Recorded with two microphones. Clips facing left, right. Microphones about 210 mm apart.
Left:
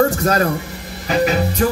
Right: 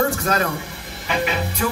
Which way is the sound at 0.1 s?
40° left (ahead or behind).